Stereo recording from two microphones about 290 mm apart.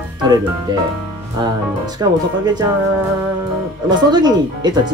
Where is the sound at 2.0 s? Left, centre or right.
Centre.